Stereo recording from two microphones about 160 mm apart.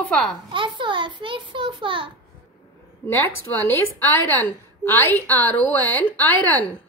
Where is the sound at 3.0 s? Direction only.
15° left (ahead or behind).